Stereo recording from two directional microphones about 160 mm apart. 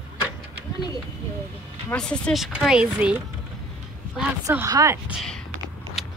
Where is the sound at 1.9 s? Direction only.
5° left (ahead or behind).